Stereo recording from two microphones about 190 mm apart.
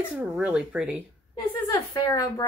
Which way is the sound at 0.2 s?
5° right (ahead or behind).